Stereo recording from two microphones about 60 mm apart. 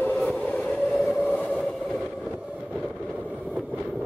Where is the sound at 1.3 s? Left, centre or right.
Left.